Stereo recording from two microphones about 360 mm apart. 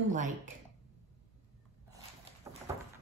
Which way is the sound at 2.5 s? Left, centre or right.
Centre.